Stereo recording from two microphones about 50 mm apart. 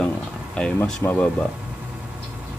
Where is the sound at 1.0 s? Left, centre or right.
Left.